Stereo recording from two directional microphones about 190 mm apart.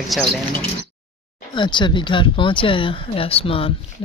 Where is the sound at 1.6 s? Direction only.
25° left (ahead or behind).